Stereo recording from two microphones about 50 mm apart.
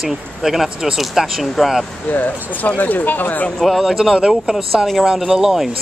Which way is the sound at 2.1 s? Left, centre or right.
Left.